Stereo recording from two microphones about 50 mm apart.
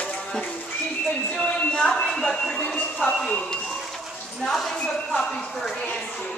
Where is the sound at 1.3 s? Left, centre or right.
Left.